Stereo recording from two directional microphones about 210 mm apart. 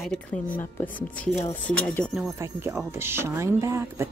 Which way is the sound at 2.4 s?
10° right (ahead or behind).